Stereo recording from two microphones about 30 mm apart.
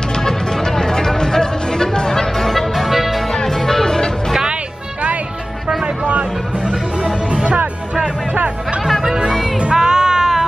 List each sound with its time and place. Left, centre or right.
0.2 s music: centre
2.4 s music: centre
2.7 s music: centre
3.4 s music: centre
6.0 s music: right
8.8 s music: centre
9.8 s music: right